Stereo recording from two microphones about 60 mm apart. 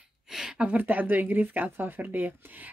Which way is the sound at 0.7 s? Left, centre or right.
Right.